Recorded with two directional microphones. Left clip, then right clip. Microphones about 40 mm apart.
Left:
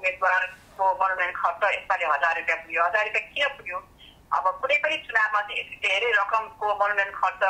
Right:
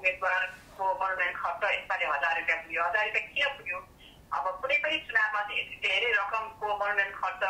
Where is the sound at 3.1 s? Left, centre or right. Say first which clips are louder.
Left 3 dB; left.